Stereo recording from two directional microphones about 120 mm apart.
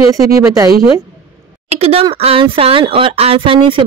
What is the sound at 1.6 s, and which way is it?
Speech, 60° right (ahead or behind).